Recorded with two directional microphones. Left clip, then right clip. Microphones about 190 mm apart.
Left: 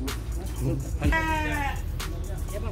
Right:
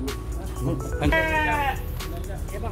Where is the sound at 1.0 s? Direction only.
50° right (ahead or behind).